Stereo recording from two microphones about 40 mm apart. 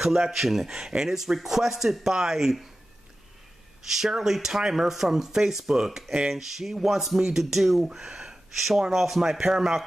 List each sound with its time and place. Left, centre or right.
0.0 s speech: centre
3.8 s speech: centre